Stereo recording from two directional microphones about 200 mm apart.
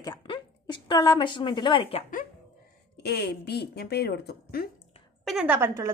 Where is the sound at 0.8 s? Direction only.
20° left (ahead or behind).